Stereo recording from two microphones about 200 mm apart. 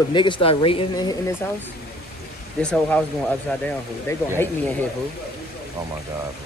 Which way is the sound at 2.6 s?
5° left (ahead or behind).